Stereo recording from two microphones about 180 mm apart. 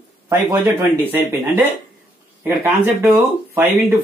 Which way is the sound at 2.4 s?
10° right (ahead or behind).